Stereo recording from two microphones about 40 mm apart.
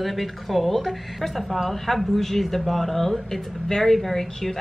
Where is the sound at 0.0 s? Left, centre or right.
Centre.